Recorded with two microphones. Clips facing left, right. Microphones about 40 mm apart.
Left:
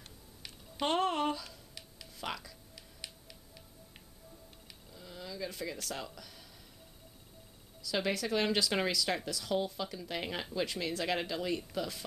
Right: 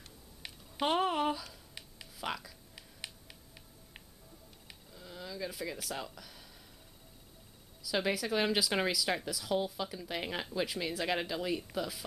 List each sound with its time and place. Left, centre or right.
0.4 s music: centre
0.8 s speech: centre
2.7 s music: centre
4.9 s speech: centre
7.8 s speech: centre